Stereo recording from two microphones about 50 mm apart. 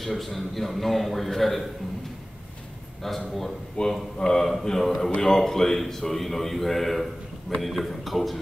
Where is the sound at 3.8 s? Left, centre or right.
Centre.